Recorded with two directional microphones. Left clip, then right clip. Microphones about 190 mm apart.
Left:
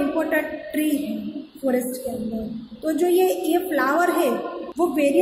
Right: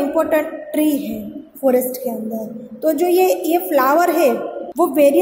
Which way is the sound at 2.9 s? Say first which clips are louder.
Right 5 dB; 20° right (ahead or behind).